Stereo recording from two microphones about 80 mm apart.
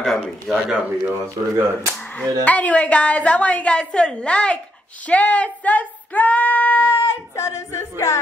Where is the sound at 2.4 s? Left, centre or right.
Centre.